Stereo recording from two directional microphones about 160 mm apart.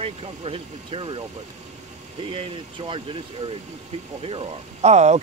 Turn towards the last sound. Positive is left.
turn(degrees=-45)  # may be behind; listen again after turning